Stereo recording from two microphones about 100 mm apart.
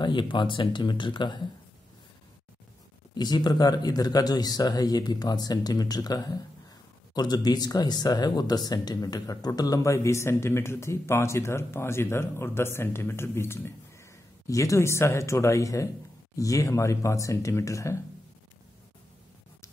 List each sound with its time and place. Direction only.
0.0 s speech: 50° left (ahead or behind)
3.2 s speech: 45° left (ahead or behind)